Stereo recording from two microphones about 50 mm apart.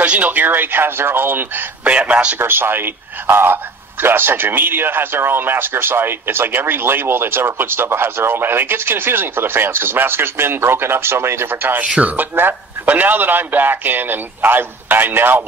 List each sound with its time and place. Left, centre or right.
0.0 s speech: right
1.9 s a man's voice: right
2.3 s speech: right
12.0 s a man's voice: right
12.4 s a man's voice: right